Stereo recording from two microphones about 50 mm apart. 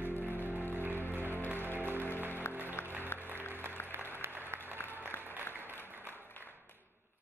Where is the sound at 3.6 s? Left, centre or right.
Right.